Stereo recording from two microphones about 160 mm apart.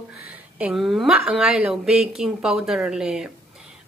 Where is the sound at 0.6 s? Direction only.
5° right (ahead or behind).